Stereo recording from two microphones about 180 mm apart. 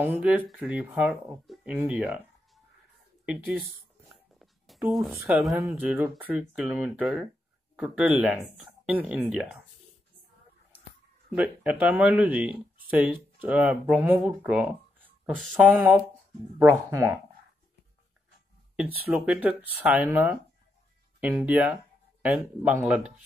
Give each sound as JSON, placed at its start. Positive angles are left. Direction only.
{"t": 0.0, "sound": "speech", "side_deg": -5}
{"t": 1.9, "sound": "music", "side_deg": -5}
{"t": 4.1, "sound": "writing", "side_deg": 0}
{"t": 5.3, "sound": "speech", "side_deg": 0}
{"t": 11.2, "sound": "speech", "side_deg": -5}
{"t": 19.0, "sound": "speech", "side_deg": -5}